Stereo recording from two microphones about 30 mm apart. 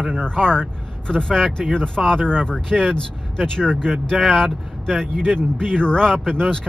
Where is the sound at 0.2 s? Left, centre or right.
Left.